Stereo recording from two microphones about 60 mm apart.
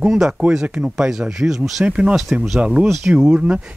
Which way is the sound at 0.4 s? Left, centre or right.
Centre.